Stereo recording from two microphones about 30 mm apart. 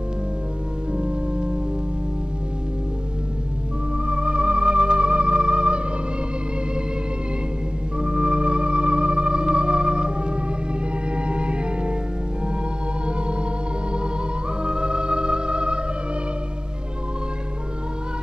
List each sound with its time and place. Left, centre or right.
0.9 s music: right
4.0 s music: right
8.0 s music: right
14.6 s music: right